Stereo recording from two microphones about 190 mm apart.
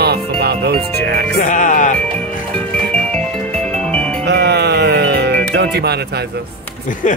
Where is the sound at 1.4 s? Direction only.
40° left (ahead or behind).